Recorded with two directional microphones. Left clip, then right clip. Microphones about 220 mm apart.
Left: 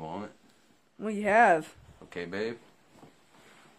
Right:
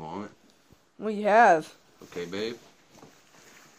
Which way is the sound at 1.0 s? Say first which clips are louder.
Right 3 dB; centre (ahead or behind).